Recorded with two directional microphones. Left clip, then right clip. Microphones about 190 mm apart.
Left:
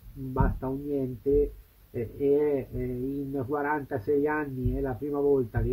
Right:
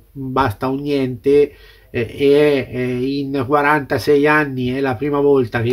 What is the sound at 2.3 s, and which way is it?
Speech, 10° right (ahead or behind).